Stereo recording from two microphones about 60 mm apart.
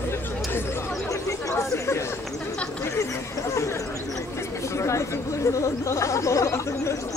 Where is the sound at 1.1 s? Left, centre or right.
Left.